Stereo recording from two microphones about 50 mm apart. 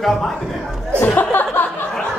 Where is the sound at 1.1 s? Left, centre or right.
Left.